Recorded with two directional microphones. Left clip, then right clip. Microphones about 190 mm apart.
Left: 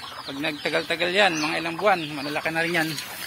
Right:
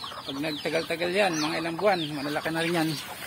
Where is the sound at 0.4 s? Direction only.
5° left (ahead or behind); by 2.9 s 15° right (ahead or behind).